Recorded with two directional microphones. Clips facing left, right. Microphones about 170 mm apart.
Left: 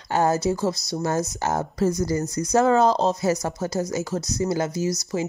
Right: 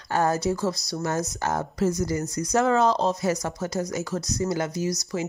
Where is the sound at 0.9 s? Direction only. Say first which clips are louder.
Left 3 dB; 35° left (ahead or behind).